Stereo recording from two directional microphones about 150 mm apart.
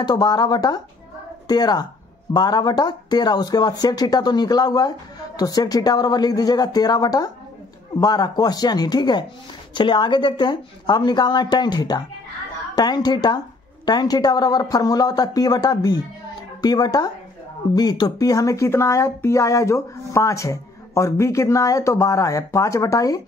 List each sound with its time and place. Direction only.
0.0 s speech: 30° left (ahead or behind)